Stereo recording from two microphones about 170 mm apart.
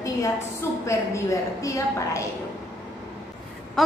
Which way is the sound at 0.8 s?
15° left (ahead or behind).